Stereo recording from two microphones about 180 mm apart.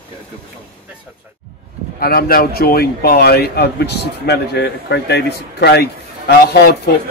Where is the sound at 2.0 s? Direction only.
55° left (ahead or behind).